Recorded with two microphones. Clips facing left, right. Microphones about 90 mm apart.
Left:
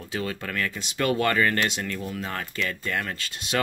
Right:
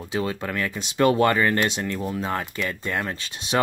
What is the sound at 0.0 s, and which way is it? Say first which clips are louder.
Speech: right 4 dB; 20° right (ahead or behind).